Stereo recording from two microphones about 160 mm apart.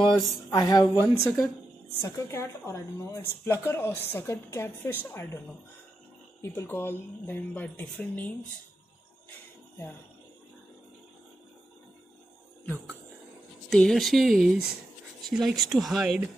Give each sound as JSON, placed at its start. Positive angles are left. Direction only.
{"t": 0.5, "sound": "speech", "side_deg": 25}
{"t": 6.4, "sound": "speech", "side_deg": 15}
{"t": 13.7, "sound": "speech", "side_deg": 5}